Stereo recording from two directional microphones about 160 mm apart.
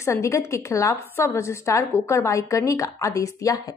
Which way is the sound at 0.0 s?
15° left (ahead or behind).